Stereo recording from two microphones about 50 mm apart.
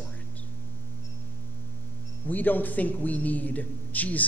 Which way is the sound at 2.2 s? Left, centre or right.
Left.